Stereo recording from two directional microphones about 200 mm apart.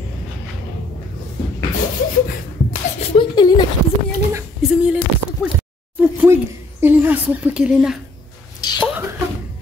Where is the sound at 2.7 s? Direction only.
30° left (ahead or behind).